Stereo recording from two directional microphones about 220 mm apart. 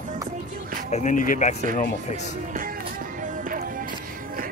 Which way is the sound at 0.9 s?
35° left (ahead or behind).